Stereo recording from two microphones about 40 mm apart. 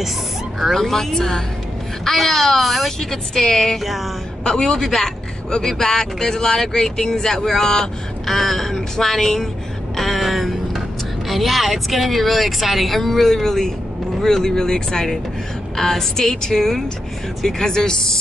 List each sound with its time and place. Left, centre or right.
0.7 s a man's voice: centre
9.9 s a sound: centre
11.2 s a man's voice: centre